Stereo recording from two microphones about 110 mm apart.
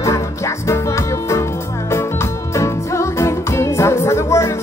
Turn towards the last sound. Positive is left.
turn(degrees=25)  # may be behind; listen again after turning